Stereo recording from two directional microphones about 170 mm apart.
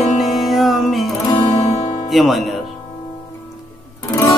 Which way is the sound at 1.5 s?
40° left (ahead or behind).